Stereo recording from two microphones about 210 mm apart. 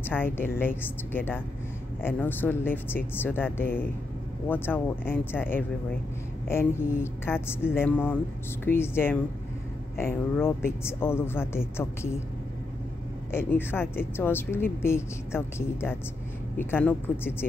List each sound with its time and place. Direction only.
0.0 s speech: 10° left (ahead or behind)
13.3 s speech: 10° left (ahead or behind)